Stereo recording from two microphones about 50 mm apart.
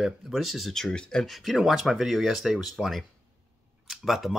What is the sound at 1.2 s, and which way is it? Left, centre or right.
Speech, centre.